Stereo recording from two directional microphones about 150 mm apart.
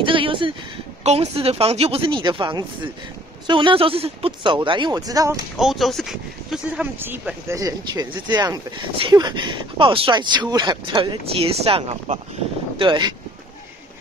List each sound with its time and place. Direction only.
0.0 s speech: 35° right (ahead or behind)
5.6 s speech: centre (ahead or behind)
7.0 s speech: 15° right (ahead or behind); by 13.1 s 30° right (ahead or behind)